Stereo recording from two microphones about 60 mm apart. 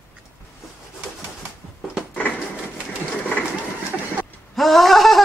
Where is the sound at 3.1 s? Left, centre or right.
Centre.